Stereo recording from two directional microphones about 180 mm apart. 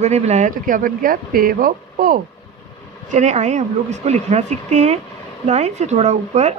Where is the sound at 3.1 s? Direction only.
40° right (ahead or behind).